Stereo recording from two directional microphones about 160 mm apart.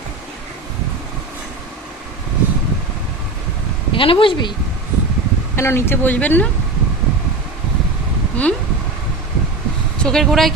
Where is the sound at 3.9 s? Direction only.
35° left (ahead or behind).